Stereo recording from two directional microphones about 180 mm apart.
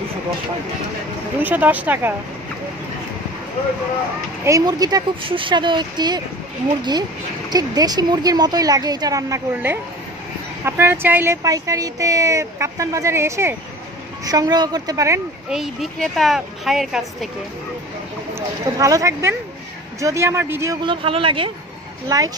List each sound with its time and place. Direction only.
1.4 s speech: 10° right (ahead or behind)
4.5 s speech: 20° right (ahead or behind)
15.5 s speech: centre (ahead or behind)
18.3 s speech: 20° right (ahead or behind)
22.1 s speech: 20° right (ahead or behind)